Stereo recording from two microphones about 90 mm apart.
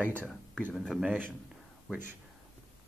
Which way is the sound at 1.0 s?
20° right (ahead or behind).